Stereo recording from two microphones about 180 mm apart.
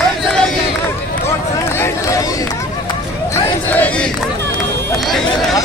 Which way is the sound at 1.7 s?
15° left (ahead or behind).